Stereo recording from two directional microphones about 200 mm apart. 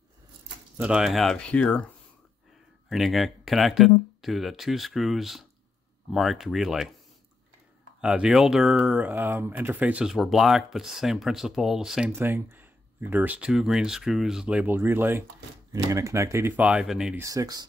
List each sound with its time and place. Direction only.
0.7 s speech: 5° right (ahead or behind)
2.9 s speech: centre (ahead or behind)
8.0 s speech: 5° right (ahead or behind)
17.2 s speech: 15° right (ahead or behind)